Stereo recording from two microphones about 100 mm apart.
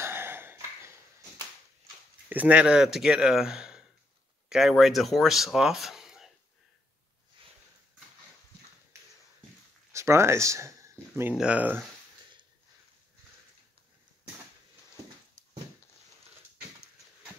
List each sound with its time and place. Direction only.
0.0 s cough: 25° right (ahead or behind)
2.2 s speech: 15° right (ahead or behind)
9.9 s speech: 30° right (ahead or behind)
11.3 s speech: 10° right (ahead or behind)